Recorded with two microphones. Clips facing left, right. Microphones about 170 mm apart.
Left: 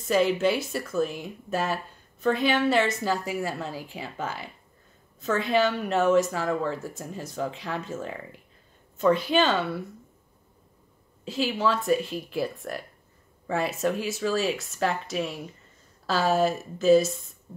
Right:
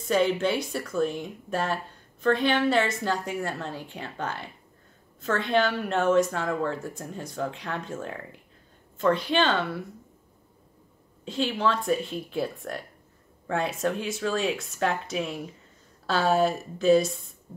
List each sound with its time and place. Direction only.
0.0 s a woman's voice: 5° left (ahead or behind)
11.2 s a woman's voice: 5° left (ahead or behind)